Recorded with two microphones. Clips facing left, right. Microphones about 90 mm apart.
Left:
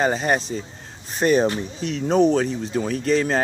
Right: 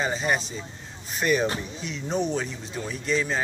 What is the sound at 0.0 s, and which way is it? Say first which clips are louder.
Speech: left 5 dB; 50° left (ahead or behind).